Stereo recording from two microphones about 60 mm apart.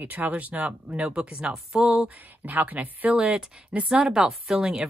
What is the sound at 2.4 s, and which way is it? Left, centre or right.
Speech, right.